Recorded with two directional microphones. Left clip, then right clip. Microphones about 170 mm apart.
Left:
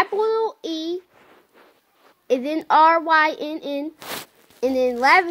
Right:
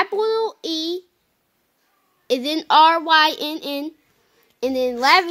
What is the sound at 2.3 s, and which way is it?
A child's voice, 55° right (ahead or behind).